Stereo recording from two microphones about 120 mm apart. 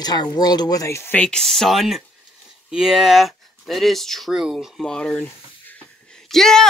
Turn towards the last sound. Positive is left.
turn(degrees=5)  # may be behind; listen again after turning